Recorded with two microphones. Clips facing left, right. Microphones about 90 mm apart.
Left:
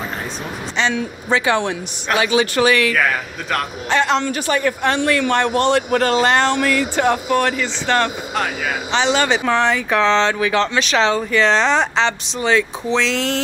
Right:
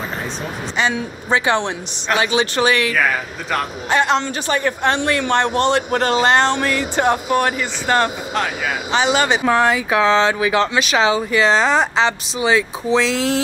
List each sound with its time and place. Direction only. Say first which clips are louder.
0.9 s a man's voice: even; 25° right (ahead or behind)
3.0 s speech: even; centre (ahead or behind)
3.9 s a man's voice: even; 20° right (ahead or behind)